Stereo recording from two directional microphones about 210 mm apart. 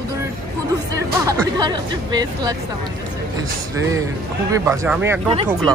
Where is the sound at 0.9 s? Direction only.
20° right (ahead or behind).